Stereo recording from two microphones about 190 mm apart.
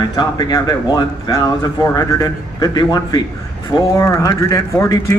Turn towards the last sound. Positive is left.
turn(degrees=20)  # may be behind; listen again after turning